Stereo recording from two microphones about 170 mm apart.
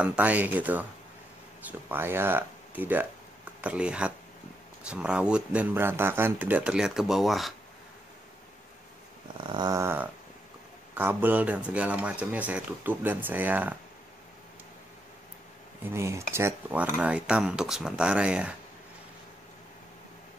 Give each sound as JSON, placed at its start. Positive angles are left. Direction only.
{"t": 0.0, "sound": "speech", "side_deg": -10}
{"t": 9.5, "sound": "dog", "side_deg": -20}
{"t": 11.0, "sound": "speech", "side_deg": -10}
{"t": 15.8, "sound": "speech", "side_deg": -15}